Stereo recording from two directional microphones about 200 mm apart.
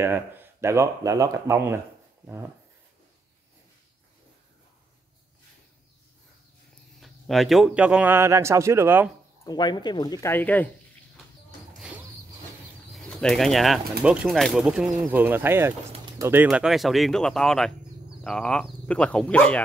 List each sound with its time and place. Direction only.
0.0 s a man's voice: 10° right (ahead or behind)
7.0 s a man's voice: centre (ahead or behind)
9.4 s speech: 20° left (ahead or behind)
11.8 s creak: 5° right (ahead or behind)
12.9 s speech: 5° left (ahead or behind)